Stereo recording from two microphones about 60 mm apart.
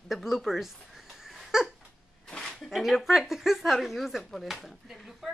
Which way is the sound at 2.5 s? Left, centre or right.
Centre.